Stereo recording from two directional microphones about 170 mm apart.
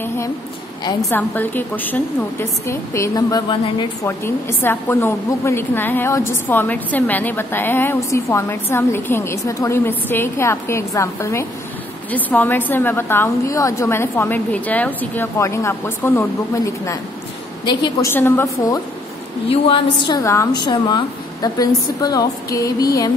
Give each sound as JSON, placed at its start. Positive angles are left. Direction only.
{"t": 1.1, "sound": "a woman's voice", "side_deg": 10}
{"t": 18.1, "sound": "a woman's voice", "side_deg": 15}
{"t": 19.5, "sound": "a woman's voice", "side_deg": 30}